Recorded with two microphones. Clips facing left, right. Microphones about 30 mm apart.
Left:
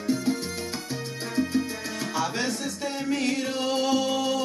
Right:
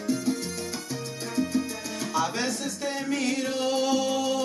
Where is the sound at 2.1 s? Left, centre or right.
Centre.